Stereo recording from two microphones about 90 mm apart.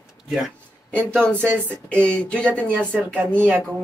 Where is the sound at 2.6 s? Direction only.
20° right (ahead or behind).